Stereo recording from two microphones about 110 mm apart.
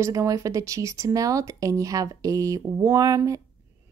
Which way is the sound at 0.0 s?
30° right (ahead or behind).